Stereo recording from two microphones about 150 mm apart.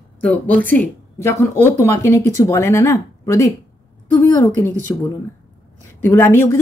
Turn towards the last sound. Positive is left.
turn(degrees=15)  # may be behind; listen again after turning